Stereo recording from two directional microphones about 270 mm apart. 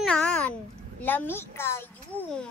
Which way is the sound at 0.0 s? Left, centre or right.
Centre.